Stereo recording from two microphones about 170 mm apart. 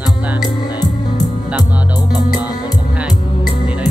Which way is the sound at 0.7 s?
25° left (ahead or behind).